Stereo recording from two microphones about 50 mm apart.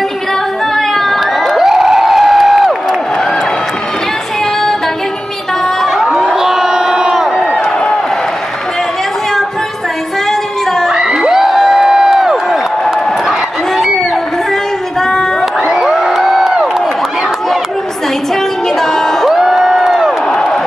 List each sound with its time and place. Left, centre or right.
0.7 s crowd: centre
1.5 s crowd: centre
6.0 s crowd: centre
7.5 s run: centre
10.9 s crowd: centre
15.0 s a sound: centre
15.7 s crowd: centre
18.3 s a sound: centre
19.2 s music: centre
20.0 s crowd: centre